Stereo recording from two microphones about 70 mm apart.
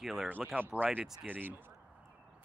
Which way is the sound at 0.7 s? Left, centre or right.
Right.